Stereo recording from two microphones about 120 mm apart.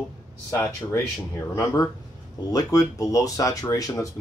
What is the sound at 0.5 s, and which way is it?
Speech, 25° left (ahead or behind).